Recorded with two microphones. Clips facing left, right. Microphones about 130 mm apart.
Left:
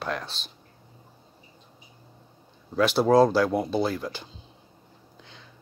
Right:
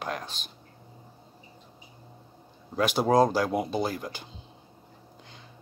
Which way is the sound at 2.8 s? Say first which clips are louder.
Left 3 dB; 10° right (ahead or behind).